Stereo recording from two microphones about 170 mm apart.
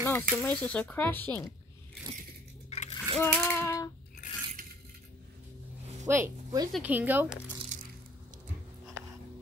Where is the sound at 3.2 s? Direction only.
15° left (ahead or behind).